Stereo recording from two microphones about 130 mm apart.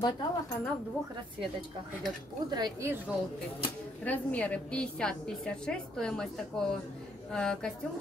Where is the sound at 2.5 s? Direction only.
30° right (ahead or behind).